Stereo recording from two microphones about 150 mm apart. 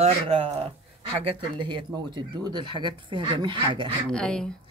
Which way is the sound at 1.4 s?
30° right (ahead or behind).